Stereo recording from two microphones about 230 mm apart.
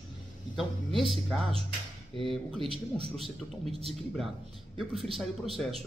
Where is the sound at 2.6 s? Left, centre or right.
Right.